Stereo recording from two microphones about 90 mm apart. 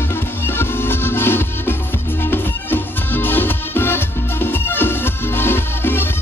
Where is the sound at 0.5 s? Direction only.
25° left (ahead or behind).